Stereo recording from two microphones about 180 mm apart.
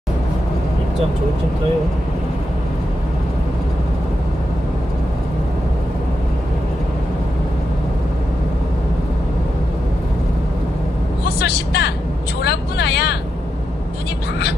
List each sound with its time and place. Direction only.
11.3 s vehicle: 65° left (ahead or behind)